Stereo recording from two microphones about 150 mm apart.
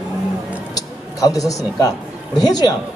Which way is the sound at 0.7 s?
25° left (ahead or behind).